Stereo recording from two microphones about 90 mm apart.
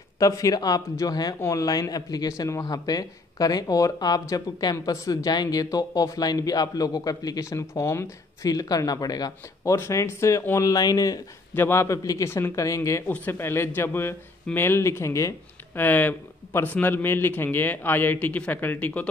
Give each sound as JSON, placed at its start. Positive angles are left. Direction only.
{"t": 0.2, "sound": "speech", "side_deg": 40}
{"t": 8.5, "sound": "speech", "side_deg": 45}
{"t": 9.8, "sound": "a man's voice", "side_deg": 30}
{"t": 11.5, "sound": "a man's voice", "side_deg": 30}
{"t": 13.1, "sound": "a man's voice", "side_deg": 20}
{"t": 15.8, "sound": "a man's voice", "side_deg": 20}